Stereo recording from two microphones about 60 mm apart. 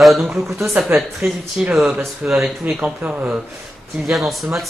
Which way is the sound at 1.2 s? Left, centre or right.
Right.